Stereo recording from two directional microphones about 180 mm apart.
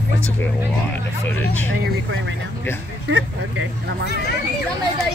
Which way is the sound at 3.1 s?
90° right.